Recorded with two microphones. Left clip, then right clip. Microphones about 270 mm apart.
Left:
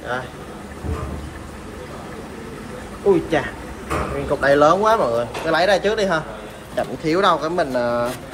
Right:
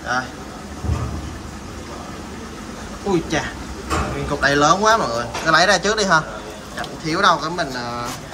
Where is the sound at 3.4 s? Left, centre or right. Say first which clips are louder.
Left 1 dB; centre.